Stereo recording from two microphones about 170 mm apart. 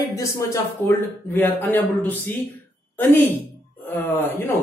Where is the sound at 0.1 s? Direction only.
15° left (ahead or behind).